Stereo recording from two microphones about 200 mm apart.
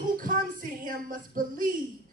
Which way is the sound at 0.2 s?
45° right (ahead or behind).